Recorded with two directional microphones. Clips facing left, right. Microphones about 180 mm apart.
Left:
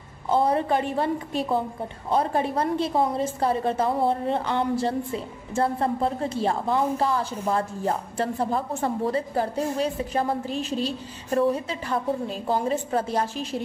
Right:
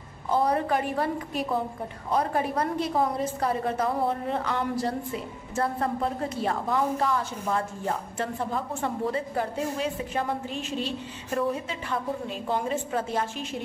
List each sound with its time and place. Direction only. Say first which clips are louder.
0.3 s a woman's voice: left 2 dB; 25° left (ahead or behind)